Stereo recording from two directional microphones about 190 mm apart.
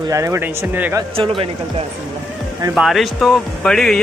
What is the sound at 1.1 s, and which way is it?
Speech, 30° right (ahead or behind).